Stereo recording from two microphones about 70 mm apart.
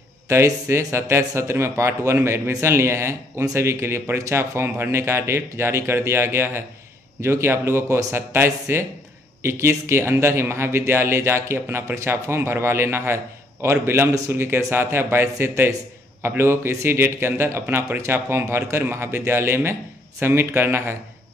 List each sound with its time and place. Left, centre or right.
0.3 s a man's voice: right